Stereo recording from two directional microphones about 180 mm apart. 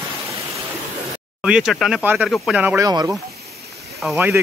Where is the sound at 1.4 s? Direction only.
5° right (ahead or behind).